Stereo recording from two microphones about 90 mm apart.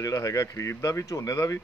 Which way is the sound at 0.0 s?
40° left (ahead or behind).